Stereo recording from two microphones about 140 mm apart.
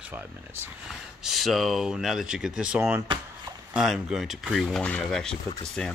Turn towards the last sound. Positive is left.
turn(degrees=5)  # may be behind; listen again after turning